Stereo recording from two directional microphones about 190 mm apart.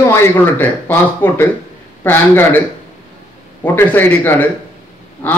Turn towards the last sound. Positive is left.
turn(degrees=10)  # may be behind; listen again after turning